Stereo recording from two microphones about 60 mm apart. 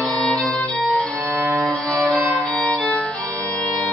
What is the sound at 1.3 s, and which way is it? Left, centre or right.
Music, right.